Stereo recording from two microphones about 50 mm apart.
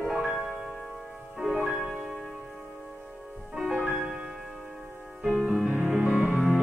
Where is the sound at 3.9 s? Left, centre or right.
Centre.